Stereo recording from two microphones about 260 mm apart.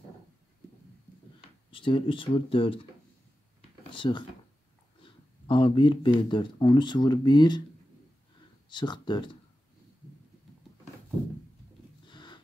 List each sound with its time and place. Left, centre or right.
1.7 s speech: centre
3.9 s speech: centre
8.6 s speech: centre
12.1 s livestock: centre